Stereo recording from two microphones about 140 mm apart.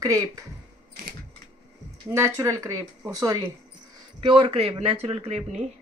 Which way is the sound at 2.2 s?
20° right (ahead or behind).